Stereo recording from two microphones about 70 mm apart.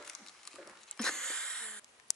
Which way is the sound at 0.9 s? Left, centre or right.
Centre.